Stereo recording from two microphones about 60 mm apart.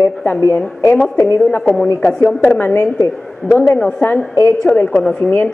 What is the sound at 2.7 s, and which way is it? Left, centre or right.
Speech, left.